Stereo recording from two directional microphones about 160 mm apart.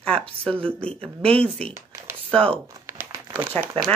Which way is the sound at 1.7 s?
20° right (ahead or behind).